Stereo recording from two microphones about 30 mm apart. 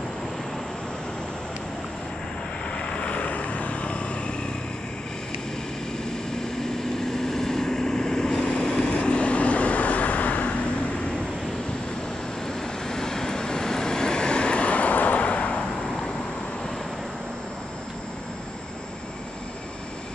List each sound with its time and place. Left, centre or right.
3.0 s vehicle: left
6.6 s vehicle: centre; by 10.5 s left
12.8 s vehicle: centre; by 15.1 s left
15.1 s vehicle: left